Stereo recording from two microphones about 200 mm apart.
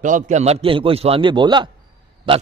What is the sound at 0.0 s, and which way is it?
A man's voice, 40° right (ahead or behind).